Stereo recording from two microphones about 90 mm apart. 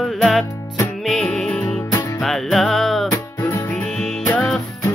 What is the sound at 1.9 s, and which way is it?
Music, 40° left (ahead or behind).